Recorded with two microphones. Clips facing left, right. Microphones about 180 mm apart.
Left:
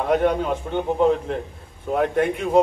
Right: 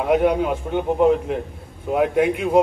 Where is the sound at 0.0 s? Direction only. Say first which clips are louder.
Right 2 dB; 5° right (ahead or behind).